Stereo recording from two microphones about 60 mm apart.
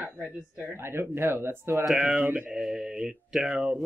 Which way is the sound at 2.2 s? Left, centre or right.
Right.